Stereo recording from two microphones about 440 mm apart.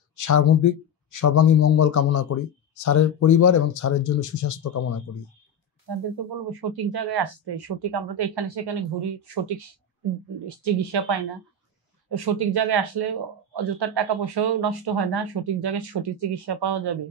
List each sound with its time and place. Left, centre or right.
0.1 s a man's voice: left
5.9 s speech: right